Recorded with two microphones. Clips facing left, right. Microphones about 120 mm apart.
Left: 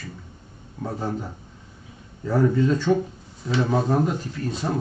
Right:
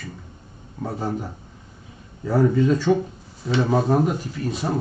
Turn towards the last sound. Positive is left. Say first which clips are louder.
# right 1 dB
turn(degrees=-10)  # may be behind; listen again after turning